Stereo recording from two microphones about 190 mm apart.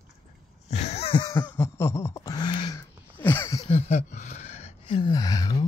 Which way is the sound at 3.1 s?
10° left (ahead or behind).